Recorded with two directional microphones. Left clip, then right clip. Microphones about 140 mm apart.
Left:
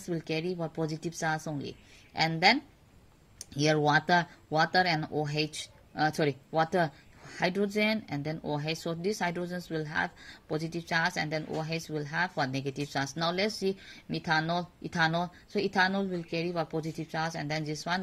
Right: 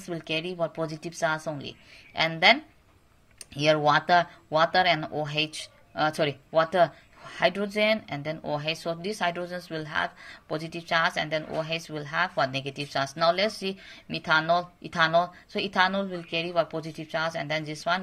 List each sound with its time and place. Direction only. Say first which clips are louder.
0.0 s speech: right 2 dB; 45° left (ahead or behind)